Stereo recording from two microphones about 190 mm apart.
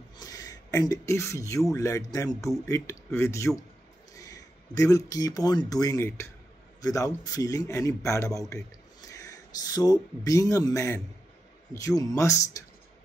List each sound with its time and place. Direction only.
0.2 s rub: 20° left (ahead or behind)
1.7 s a man's voice: 15° left (ahead or behind)